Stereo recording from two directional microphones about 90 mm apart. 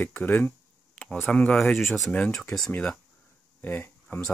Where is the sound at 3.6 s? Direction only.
25° left (ahead or behind).